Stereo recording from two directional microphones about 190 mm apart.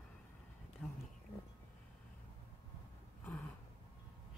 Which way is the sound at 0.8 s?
10° left (ahead or behind).